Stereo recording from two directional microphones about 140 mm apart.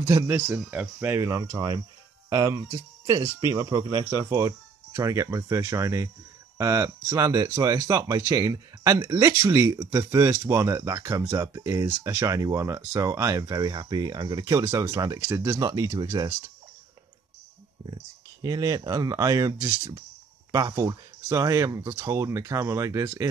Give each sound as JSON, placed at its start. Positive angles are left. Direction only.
{"t": 0.0, "sound": "speech", "side_deg": -20}
{"t": 1.1, "sound": "speech", "side_deg": -25}
{"t": 18.4, "sound": "speech", "side_deg": -25}